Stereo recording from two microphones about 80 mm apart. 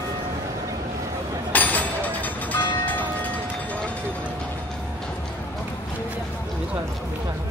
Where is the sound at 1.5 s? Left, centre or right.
Left.